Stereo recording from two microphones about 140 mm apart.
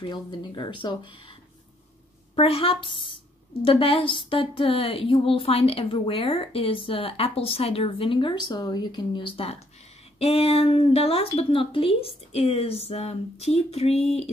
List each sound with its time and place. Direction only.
0.0 s a woman's voice: 35° left (ahead or behind)
2.3 s a woman's voice: 40° left (ahead or behind)